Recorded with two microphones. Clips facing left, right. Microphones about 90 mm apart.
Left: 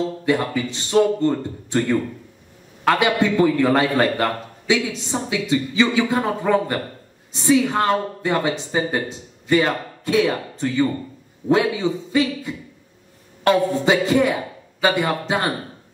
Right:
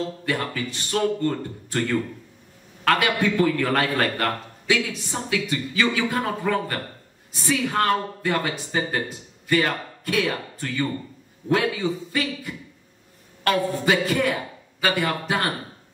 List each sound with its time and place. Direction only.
0.2 s a man's voice: 20° left (ahead or behind)